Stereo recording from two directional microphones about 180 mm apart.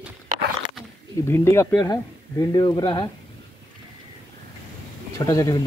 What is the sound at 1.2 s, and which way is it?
Speech, 15° left (ahead or behind).